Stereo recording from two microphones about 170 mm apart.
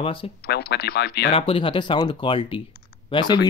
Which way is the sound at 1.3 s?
30° left (ahead or behind).